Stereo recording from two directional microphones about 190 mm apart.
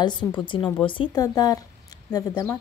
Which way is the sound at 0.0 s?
25° left (ahead or behind).